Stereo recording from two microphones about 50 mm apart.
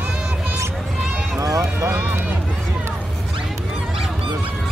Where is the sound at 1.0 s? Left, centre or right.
Centre.